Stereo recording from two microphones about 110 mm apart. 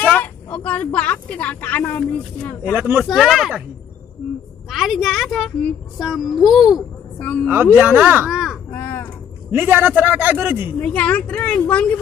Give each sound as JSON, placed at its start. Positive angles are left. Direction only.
{"t": 0.0, "sound": "speech", "side_deg": 15}
{"t": 2.7, "sound": "a man's voice", "side_deg": -15}
{"t": 3.1, "sound": "a woman's voice", "side_deg": 0}
{"t": 4.6, "sound": "a woman's voice", "side_deg": 0}
{"t": 7.2, "sound": "speech", "side_deg": 10}
{"t": 7.7, "sound": "a man's voice", "side_deg": -20}
{"t": 8.7, "sound": "speech", "side_deg": 20}
{"t": 9.5, "sound": "a man's voice", "side_deg": -15}
{"t": 10.8, "sound": "speech", "side_deg": 15}